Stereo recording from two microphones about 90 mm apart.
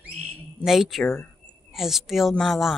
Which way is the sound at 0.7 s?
5° right (ahead or behind).